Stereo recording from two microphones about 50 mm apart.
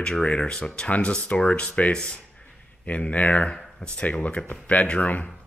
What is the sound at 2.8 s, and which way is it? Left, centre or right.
Speech, left.